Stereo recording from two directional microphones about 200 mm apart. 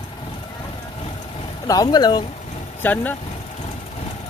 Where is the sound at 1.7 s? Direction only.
20° left (ahead or behind).